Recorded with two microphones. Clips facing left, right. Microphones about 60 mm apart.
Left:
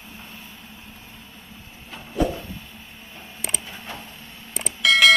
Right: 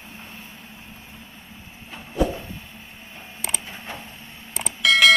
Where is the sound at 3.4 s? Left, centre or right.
Centre.